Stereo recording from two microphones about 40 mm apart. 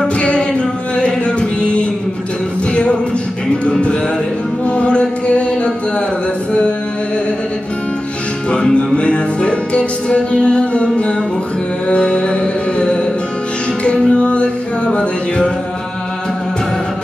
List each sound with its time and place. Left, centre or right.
0.2 s music: left
8.5 s music: left